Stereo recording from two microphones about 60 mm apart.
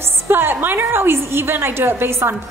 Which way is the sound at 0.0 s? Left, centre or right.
Right.